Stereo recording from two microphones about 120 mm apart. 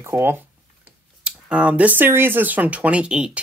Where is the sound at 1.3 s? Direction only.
10° right (ahead or behind).